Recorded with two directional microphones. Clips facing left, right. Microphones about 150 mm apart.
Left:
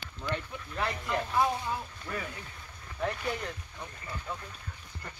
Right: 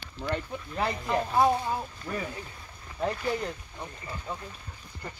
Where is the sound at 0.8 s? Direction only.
30° right (ahead or behind).